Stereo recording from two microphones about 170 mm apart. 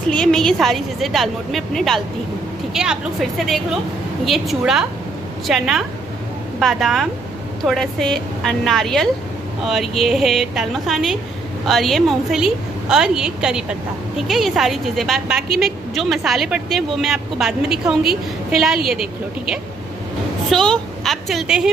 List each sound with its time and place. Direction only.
0.1 s a woman's voice: 5° left (ahead or behind)
20.4 s a woman's voice: 5° left (ahead or behind)